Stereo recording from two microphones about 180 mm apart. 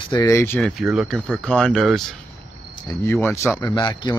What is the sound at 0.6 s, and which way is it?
Speech, centre (ahead or behind).